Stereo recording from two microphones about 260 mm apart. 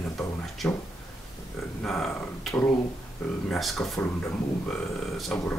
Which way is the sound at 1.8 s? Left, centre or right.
Centre.